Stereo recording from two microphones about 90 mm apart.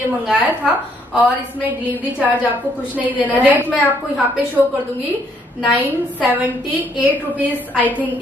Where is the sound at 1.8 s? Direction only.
15° right (ahead or behind).